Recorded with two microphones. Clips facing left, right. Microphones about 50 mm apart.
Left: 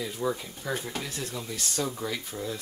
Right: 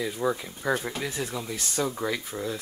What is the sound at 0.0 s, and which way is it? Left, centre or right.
Speech, centre.